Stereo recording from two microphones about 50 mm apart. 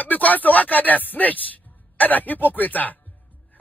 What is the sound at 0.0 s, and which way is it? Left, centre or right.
A man's voice, left.